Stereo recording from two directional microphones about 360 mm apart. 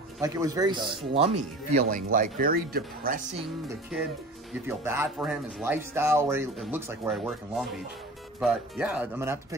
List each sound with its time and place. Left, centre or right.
0.2 s speech: centre
4.6 s speech: centre